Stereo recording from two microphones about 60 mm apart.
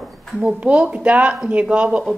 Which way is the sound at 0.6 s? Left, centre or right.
Right.